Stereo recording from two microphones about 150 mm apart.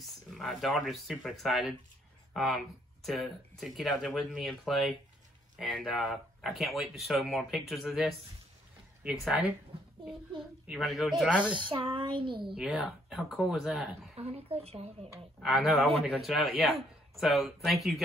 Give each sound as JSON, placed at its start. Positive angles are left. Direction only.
{"t": 0.0, "sound": "speech", "side_deg": 0}
{"t": 10.7, "sound": "speech", "side_deg": 0}
{"t": 11.7, "sound": "speech", "side_deg": -35}
{"t": 12.5, "sound": "speech", "side_deg": -5}
{"t": 14.2, "sound": "speech", "side_deg": -40}
{"t": 15.4, "sound": "speech", "side_deg": 0}